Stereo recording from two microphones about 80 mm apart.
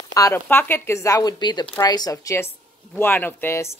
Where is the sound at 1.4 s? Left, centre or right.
Left.